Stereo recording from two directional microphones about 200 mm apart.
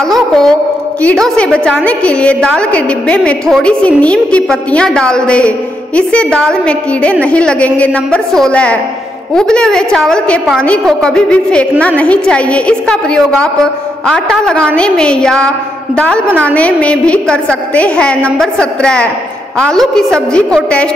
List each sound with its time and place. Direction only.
0.0 s a woman's voice: centre (ahead or behind)